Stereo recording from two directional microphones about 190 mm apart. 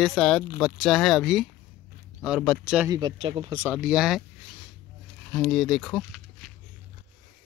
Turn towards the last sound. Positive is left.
turn(degrees=0)  # may be behind; listen again after turning